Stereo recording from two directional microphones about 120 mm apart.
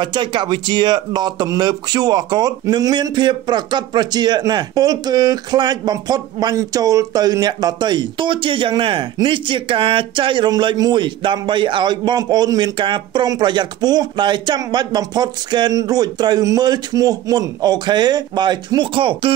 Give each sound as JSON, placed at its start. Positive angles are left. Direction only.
{"t": 0.0, "sound": "a man's voice", "side_deg": -40}